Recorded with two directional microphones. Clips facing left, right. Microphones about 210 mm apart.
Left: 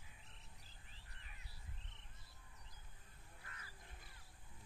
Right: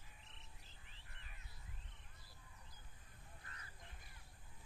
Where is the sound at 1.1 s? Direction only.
35° left (ahead or behind).